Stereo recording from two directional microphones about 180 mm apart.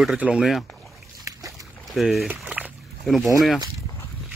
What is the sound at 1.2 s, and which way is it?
Dog, 20° right (ahead or behind).